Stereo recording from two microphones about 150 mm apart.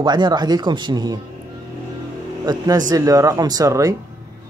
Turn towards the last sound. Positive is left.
turn(degrees=-20)  # may be behind; listen again after turning